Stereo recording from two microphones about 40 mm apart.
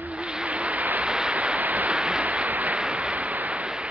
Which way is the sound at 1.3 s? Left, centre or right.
Right.